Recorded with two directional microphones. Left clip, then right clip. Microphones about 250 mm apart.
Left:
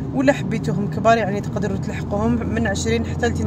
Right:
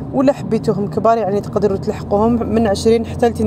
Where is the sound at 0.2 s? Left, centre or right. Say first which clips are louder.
Right 4 dB; centre.